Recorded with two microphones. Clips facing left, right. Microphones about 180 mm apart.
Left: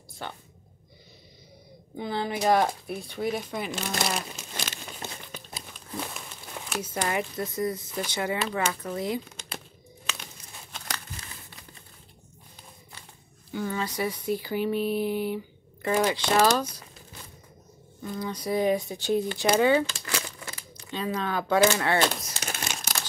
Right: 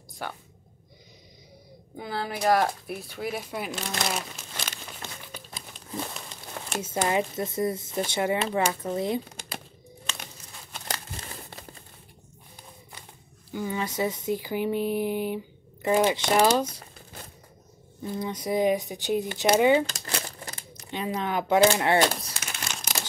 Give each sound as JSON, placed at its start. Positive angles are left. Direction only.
{"t": 2.0, "sound": "speech", "side_deg": -5}
{"t": 6.7, "sound": "speech", "side_deg": -25}
{"t": 10.9, "sound": "crumpling", "side_deg": -40}
{"t": 13.5, "sound": "speech", "side_deg": -10}
{"t": 18.0, "sound": "speech", "side_deg": -25}
{"t": 19.9, "sound": "crumpling", "side_deg": -40}
{"t": 20.9, "sound": "speech", "side_deg": -20}
{"t": 22.3, "sound": "crumpling", "side_deg": 35}